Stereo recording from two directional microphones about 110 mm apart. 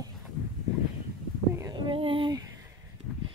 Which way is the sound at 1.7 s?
50° right (ahead or behind).